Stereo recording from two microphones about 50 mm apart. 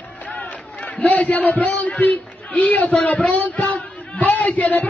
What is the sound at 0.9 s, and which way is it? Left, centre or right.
A man's voice, left.